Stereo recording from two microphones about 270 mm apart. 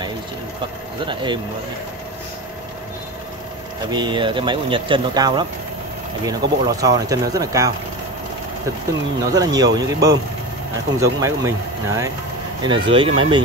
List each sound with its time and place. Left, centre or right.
1.0 s speech: centre
3.9 s speech: centre
9.2 s speech: centre